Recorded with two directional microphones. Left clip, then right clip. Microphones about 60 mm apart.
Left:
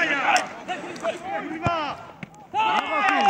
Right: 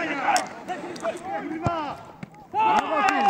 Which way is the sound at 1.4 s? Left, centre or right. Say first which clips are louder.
Left 3 dB; left.